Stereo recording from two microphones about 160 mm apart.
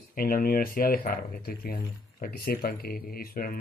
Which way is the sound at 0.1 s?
65° left (ahead or behind).